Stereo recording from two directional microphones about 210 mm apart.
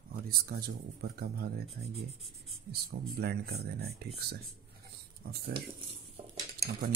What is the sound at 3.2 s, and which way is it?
Speech, 50° right (ahead or behind).